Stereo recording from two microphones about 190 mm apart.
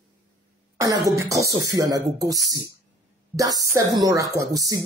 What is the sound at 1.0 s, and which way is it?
Speech, 15° right (ahead or behind).